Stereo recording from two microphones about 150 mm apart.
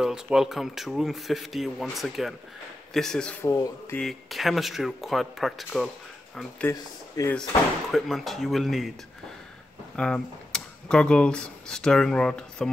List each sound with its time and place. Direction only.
0.0 s a man's voice: 5° right (ahead or behind)
3.4 s speech: 20° left (ahead or behind)
4.0 s a man's voice: centre (ahead or behind)
6.7 s speech: 20° left (ahead or behind)
7.9 s a man's voice: centre (ahead or behind)
9.9 s speech: 5° left (ahead or behind)